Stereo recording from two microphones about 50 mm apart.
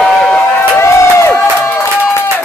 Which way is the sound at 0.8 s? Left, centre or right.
Left.